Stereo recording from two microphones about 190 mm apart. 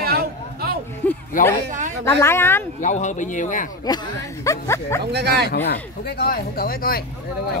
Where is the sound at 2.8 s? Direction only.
40° left (ahead or behind).